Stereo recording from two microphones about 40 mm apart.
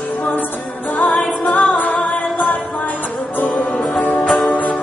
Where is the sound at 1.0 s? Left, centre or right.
Centre.